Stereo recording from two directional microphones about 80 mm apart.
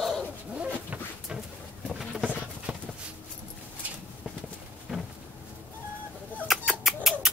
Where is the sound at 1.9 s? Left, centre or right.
Centre.